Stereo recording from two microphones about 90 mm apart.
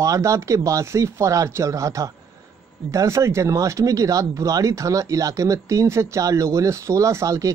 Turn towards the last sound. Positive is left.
turn(degrees=-35)  # may be behind; listen again after turning